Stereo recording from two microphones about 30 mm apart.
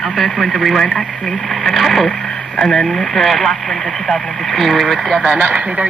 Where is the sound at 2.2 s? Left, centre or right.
Centre.